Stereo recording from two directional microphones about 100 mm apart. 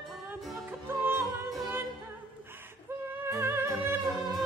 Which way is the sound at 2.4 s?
20° right (ahead or behind).